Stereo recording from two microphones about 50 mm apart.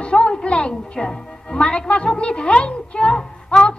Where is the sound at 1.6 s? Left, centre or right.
Left.